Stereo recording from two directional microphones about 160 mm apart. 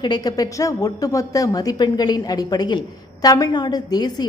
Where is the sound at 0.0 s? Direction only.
25° left (ahead or behind).